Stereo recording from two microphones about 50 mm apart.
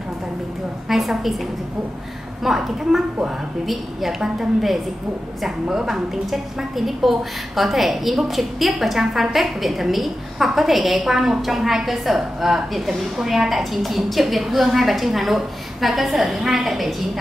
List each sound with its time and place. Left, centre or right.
0.8 s a woman's voice: centre
2.4 s a woman's voice: centre